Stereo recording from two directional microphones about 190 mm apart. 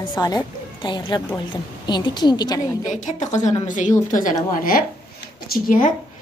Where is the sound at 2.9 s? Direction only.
40° left (ahead or behind).